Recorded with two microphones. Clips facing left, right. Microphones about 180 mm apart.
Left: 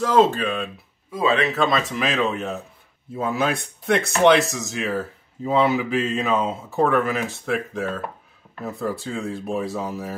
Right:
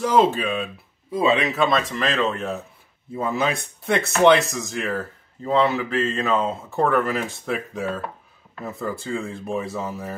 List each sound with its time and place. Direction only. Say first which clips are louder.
0.0 s speech: left 1 dB; 10° right (ahead or behind)
1.1 s a man's voice: right 1 dB; 25° right (ahead or behind)
1.4 s speech: even; centre (ahead or behind)